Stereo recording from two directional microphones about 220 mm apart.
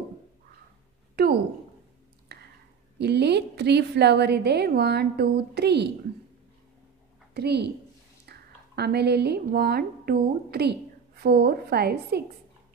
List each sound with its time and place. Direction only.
1.2 s a woman's voice: 45° right (ahead or behind)
2.3 s a sound: 50° right (ahead or behind)
3.0 s a woman's voice: 50° right (ahead or behind)
7.3 s a woman's voice: 50° right (ahead or behind)